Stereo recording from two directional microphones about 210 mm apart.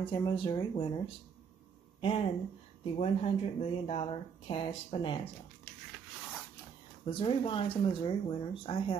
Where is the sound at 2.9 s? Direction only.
30° left (ahead or behind).